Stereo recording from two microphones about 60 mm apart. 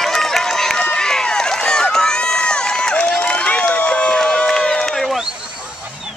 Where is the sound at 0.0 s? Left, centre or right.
Centre.